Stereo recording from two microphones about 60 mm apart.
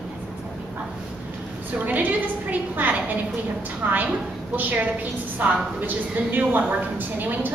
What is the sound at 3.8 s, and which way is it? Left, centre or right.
A woman's voice, right.